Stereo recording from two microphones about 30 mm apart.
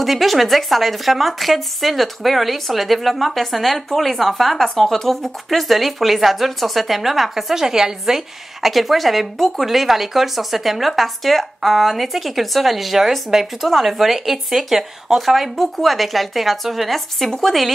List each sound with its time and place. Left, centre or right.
0.0 s speech: centre
7.5 s a woman's voice: centre
8.6 s speech: centre